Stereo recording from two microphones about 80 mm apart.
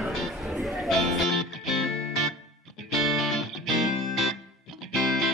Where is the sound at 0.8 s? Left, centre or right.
Centre.